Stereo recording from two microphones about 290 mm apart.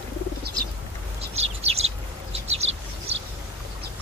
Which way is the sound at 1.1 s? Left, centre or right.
Right.